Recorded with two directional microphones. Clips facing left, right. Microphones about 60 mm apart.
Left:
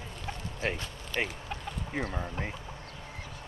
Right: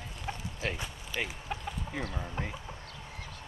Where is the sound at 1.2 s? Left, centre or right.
Left.